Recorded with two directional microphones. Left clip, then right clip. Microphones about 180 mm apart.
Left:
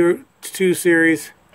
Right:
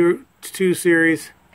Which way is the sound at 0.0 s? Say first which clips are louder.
Left 1 dB; centre (ahead or behind).